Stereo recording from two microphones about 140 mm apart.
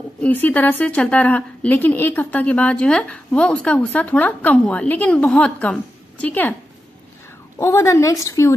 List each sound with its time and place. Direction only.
0.2 s a woman's voice: 10° left (ahead or behind)
7.5 s a woman's voice: 20° left (ahead or behind)